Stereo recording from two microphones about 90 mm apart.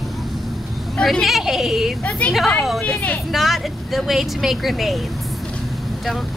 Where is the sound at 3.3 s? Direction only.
Centre (ahead or behind).